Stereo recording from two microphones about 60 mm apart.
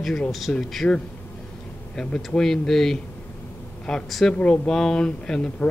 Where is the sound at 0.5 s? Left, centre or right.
Centre.